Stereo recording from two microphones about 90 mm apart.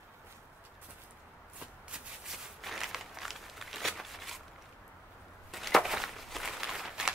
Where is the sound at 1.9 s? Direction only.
Centre (ahead or behind).